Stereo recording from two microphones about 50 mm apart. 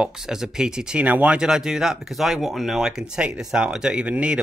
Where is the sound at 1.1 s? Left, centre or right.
Right.